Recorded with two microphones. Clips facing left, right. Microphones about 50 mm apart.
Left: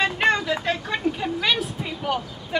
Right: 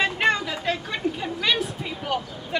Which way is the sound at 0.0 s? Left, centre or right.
Centre.